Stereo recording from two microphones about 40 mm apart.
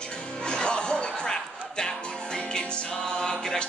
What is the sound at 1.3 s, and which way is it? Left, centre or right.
Music, centre.